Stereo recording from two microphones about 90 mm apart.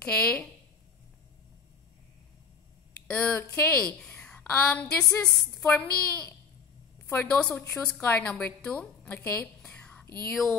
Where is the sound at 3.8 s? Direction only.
10° left (ahead or behind).